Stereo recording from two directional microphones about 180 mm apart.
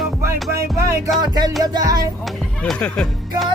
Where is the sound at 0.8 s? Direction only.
15° right (ahead or behind).